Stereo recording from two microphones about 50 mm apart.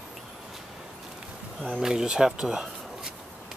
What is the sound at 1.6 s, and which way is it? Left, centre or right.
Speech, centre.